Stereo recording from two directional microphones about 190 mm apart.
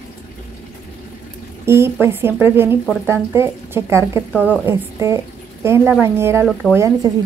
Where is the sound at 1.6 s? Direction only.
15° right (ahead or behind).